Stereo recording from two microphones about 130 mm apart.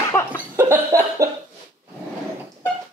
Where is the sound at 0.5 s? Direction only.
20° right (ahead or behind).